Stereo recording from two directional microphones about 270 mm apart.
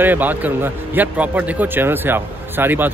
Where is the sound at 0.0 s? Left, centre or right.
Centre.